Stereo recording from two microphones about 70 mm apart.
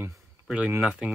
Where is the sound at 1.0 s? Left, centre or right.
Centre.